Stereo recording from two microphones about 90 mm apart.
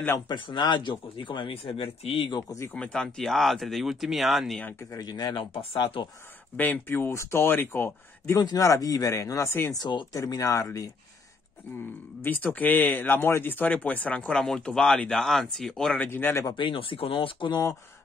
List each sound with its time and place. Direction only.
0.3 s speech: 60° left (ahead or behind); by 2.3 s 90° left
2.7 s speech: 10° left (ahead or behind)
4.6 s speech: 20° left (ahead or behind)
4.9 s speech: 45° left (ahead or behind)
5.3 s speech: 80° left
6.5 s speech: 20° left (ahead or behind)
8.4 s speech: 40° left (ahead or behind)
9.8 s speech: 60° left (ahead or behind)
10.1 s speech: 40° left (ahead or behind)
12.2 s speech: 20° left (ahead or behind)
16.0 s speech: 20° left (ahead or behind)
16.5 s speech: 70° left (ahead or behind)
17.5 s speech: 40° left (ahead or behind)